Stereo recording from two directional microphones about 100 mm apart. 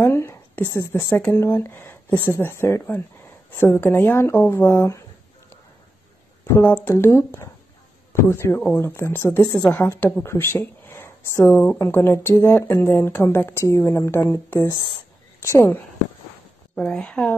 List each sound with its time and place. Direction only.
0.0 s a sound: 25° left (ahead or behind)
0.7 s speech: 35° left (ahead or behind)
6.4 s speech: 25° left (ahead or behind)
16.7 s speech: 5° left (ahead or behind)